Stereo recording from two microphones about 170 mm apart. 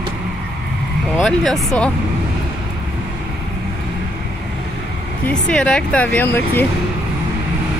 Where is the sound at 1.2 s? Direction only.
Centre (ahead or behind).